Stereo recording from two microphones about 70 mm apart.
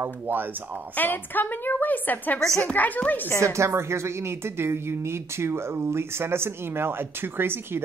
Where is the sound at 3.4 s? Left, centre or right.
Right.